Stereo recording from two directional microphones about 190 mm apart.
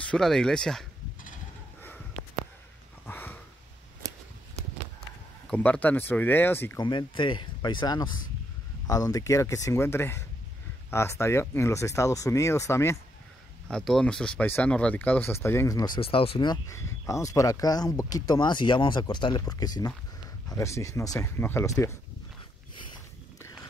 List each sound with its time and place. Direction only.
0.0 s speech: 5° left (ahead or behind)
3.1 s a sound: 10° left (ahead or behind)
5.5 s speech: 10° left (ahead or behind)
6.8 s speech: 25° left (ahead or behind)
13.7 s speech: 5° left (ahead or behind)